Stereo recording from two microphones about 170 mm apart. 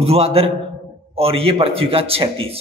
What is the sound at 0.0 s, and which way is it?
A man's voice, 35° right (ahead or behind).